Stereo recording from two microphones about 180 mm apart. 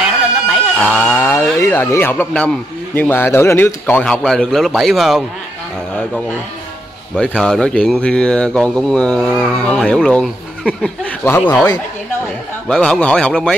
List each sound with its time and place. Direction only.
0.7 s speech: 10° left (ahead or behind)
7.2 s speech: centre (ahead or behind)
11.2 s speech: 10° left (ahead or behind)